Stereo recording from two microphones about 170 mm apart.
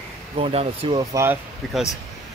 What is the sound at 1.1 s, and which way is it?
Speech, 15° right (ahead or behind).